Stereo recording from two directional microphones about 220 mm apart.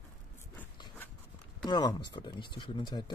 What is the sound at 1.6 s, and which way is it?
Speech, 20° left (ahead or behind).